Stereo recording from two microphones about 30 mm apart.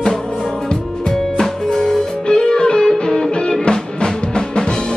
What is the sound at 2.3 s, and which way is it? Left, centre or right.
Music, left.